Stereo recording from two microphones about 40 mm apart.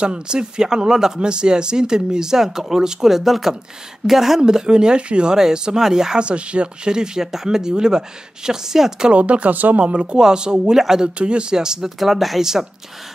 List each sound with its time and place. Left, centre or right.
0.0 s speech: right; by 4.4 s centre
4.4 s speech: centre
6.2 s speech: right; by 9.1 s centre
9.1 s speech: right
9.8 s speech: right
10.1 s speech: centre
10.7 s speech: centre
11.1 s speech: right
12.0 s speech: centre